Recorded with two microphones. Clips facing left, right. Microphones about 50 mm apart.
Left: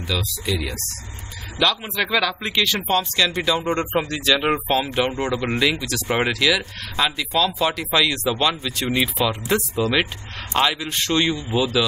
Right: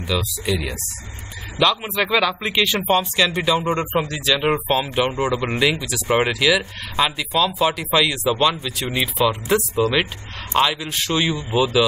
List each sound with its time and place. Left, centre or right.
0.0 s speech: centre
11.3 s speech: centre